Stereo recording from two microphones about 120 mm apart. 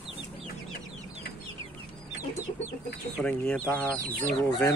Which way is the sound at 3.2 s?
10° left (ahead or behind).